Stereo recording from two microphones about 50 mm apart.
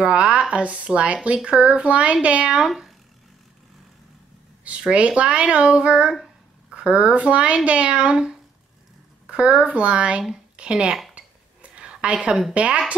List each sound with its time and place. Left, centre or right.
0.0 s speech: right
2.6 s speech: centre
4.6 s speech: right
11.1 s a sound: right
11.8 s a sound: centre
12.1 s speech: centre